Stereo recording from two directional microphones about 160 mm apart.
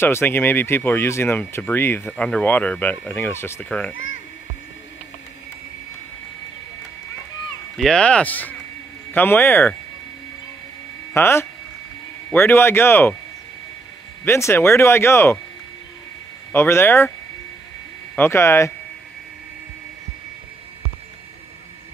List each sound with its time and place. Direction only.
0.0 s speech: 15° left (ahead or behind)
7.7 s speech: 5° left (ahead or behind)
11.1 s speech: 15° left (ahead or behind)
14.2 s speech: 15° left (ahead or behind)
16.5 s speech: 15° left (ahead or behind)
18.1 s speech: 15° left (ahead or behind)